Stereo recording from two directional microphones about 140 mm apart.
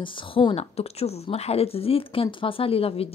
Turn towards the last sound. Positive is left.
turn(degrees=45)  # may be behind; listen again after turning